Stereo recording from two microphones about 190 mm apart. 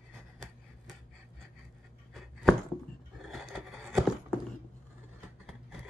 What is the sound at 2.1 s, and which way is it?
Chopping, centre (ahead or behind).